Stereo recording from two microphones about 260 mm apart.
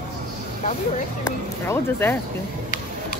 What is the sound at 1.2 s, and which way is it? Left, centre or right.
Speech, centre.